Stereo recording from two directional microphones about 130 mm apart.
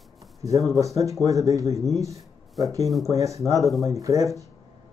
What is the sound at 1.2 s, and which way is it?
Speech, 25° right (ahead or behind).